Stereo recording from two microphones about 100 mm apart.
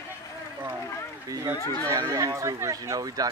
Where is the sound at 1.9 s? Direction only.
30° right (ahead or behind).